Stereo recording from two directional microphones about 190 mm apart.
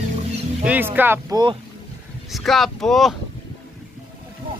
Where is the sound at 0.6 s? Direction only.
10° right (ahead or behind).